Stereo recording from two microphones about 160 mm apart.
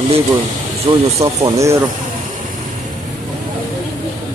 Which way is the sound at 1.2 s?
20° right (ahead or behind).